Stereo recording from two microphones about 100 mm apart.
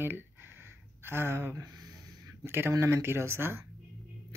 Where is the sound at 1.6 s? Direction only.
40° right (ahead or behind).